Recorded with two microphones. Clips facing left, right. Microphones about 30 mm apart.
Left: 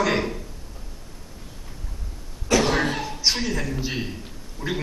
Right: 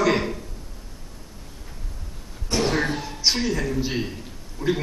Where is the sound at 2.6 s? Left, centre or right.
Left.